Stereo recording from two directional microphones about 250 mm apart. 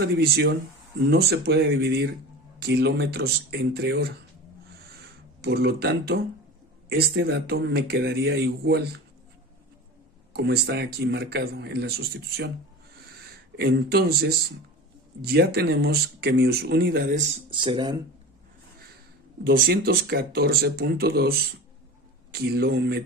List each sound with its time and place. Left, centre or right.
0.0 s speech: right
5.4 s speech: right
10.3 s speech: right
13.6 s speech: right; by 18.0 s centre
19.4 s speech: right